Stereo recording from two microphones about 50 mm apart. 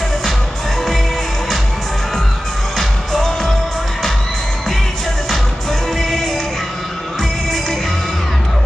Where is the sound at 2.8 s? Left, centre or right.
Centre.